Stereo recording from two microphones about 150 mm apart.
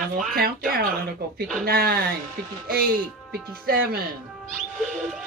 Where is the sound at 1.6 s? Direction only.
90° right.